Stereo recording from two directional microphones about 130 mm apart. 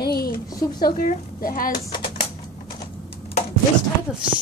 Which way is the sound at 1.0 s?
85° left.